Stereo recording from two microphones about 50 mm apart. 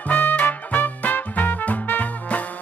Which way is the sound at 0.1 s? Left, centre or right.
Left.